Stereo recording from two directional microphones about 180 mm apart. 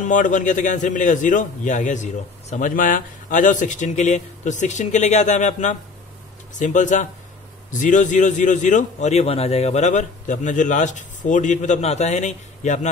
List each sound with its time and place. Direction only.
0.0 s a man's voice: 45° left (ahead or behind)